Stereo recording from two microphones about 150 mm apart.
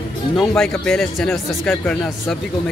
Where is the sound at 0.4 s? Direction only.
5° left (ahead or behind).